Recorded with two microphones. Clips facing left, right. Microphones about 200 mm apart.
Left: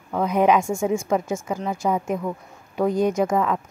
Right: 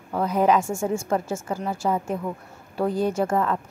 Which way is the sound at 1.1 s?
5° right (ahead or behind).